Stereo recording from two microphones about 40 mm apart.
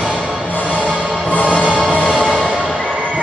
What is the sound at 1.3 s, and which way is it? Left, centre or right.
Music, left.